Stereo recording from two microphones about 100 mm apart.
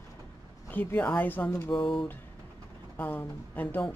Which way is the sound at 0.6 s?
20° left (ahead or behind).